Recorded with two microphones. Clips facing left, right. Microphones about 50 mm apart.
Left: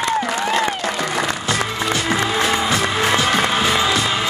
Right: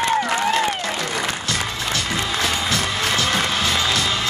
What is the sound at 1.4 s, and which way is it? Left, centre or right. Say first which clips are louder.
Music: left 4 dB; left.